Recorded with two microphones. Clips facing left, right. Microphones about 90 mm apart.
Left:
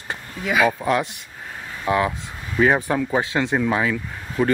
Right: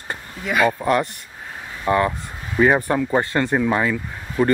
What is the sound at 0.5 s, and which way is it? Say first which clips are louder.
Speech: right 1 dB; centre (ahead or behind).